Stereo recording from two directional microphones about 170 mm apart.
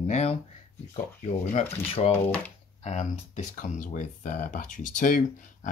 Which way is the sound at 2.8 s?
45° left (ahead or behind).